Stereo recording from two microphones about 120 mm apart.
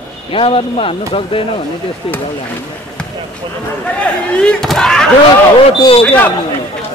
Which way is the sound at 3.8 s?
10° left (ahead or behind).